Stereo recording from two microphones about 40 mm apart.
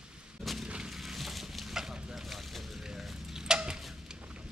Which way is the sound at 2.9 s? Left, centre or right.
Centre.